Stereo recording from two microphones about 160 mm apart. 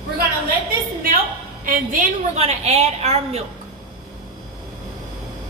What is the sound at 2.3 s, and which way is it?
A woman's voice, 40° right (ahead or behind).